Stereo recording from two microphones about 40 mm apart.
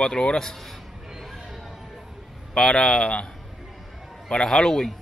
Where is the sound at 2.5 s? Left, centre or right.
Centre.